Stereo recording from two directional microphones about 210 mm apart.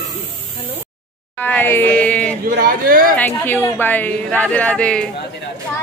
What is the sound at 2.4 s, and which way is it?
Speech, 45° right (ahead or behind).